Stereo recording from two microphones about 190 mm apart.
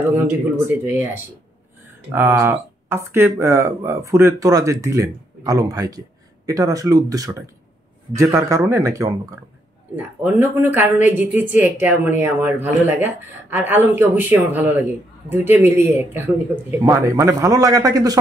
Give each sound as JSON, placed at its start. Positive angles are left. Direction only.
{"t": 0.8, "sound": "speech", "side_deg": -10}